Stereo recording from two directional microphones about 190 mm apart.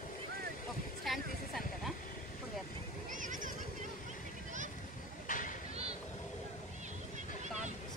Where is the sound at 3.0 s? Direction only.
45° right (ahead or behind).